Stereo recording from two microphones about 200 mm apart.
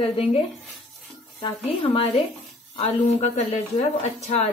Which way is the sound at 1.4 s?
30° left (ahead or behind).